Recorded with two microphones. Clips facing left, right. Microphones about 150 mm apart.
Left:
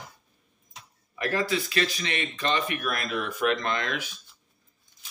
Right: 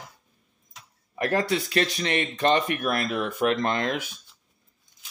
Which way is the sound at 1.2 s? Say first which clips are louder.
Right 3 dB; 60° right (ahead or behind).